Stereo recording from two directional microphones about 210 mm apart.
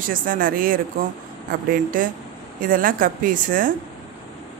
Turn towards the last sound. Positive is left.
turn(degrees=-40)  # may be behind; listen again after turning